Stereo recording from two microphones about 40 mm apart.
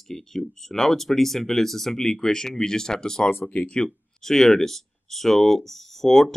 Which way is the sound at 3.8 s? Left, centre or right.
Centre.